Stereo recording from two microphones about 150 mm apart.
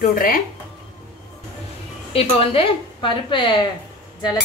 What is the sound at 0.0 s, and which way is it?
Speech, 70° left (ahead or behind).